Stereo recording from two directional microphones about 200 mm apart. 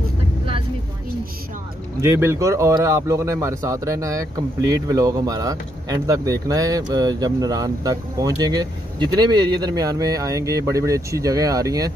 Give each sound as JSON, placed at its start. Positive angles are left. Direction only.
{"t": 2.0, "sound": "speech", "side_deg": -10}